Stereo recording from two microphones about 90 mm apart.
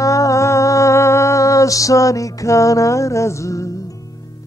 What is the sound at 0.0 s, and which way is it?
Music, 35° left (ahead or behind).